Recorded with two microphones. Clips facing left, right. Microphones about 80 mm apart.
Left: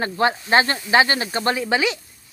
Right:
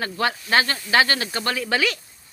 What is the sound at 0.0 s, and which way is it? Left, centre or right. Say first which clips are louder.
Speech: left 4 dB; left.